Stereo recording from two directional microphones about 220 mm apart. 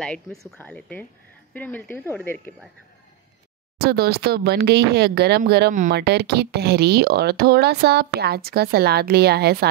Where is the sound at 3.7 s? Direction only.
45° right (ahead or behind).